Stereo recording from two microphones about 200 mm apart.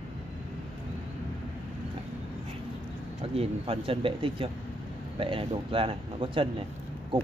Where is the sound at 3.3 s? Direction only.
30° right (ahead or behind).